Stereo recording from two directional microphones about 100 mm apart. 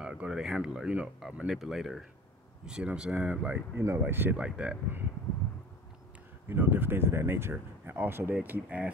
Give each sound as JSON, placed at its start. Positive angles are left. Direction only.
{"t": 0.0, "sound": "speech", "side_deg": -10}
{"t": 4.4, "sound": "speech", "side_deg": -10}
{"t": 6.5, "sound": "speech", "side_deg": -20}